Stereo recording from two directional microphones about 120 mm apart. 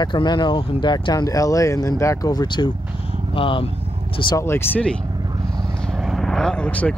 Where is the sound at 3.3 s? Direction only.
45° left (ahead or behind).